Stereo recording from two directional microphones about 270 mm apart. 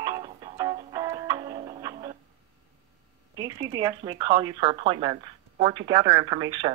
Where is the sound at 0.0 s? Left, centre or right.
Centre.